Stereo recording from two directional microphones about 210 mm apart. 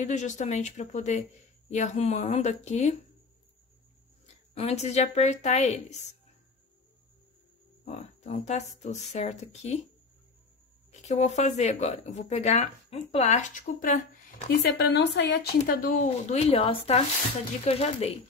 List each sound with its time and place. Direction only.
0.0 s speech: 35° left (ahead or behind)
4.6 s speech: 30° left (ahead or behind)
7.8 s speech: 30° left (ahead or behind)
10.9 s speech: 35° left (ahead or behind)
14.8 s speech: 55° left (ahead or behind); by 18.1 s 30° left (ahead or behind)